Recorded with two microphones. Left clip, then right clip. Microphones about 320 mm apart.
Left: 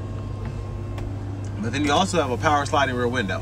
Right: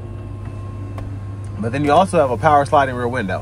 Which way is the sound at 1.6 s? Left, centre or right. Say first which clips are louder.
Right 7 dB; centre.